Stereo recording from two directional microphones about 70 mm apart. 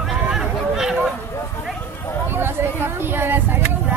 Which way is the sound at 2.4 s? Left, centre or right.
Right.